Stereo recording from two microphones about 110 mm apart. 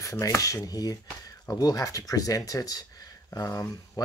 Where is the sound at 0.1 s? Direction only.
30° left (ahead or behind).